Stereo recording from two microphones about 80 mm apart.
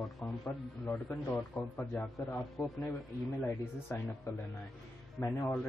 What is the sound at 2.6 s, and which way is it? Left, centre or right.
Speech, left.